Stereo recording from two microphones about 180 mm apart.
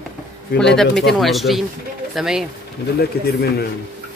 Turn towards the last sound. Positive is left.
turn(degrees=60)  # may be behind; listen again after turning